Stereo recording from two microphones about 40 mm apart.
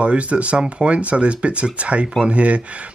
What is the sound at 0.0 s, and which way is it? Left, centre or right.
Speech, right.